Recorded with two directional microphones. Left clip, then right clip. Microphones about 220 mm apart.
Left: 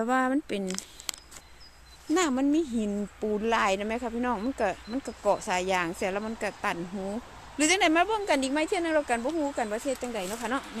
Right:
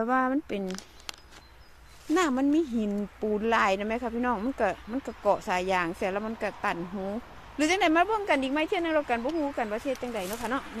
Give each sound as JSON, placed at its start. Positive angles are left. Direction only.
{"t": 0.0, "sound": "speech", "side_deg": 15}
{"t": 0.7, "sound": "a sound", "side_deg": 45}
{"t": 2.1, "sound": "speech", "side_deg": 5}